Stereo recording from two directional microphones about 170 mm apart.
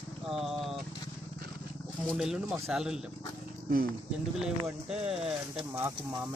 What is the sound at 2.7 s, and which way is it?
Speech, 5° right (ahead or behind).